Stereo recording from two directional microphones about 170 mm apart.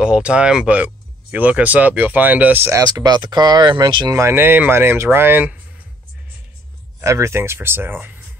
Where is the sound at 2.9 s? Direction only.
25° right (ahead or behind).